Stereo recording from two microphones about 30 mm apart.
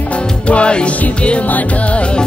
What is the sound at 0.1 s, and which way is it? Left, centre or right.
Music, left.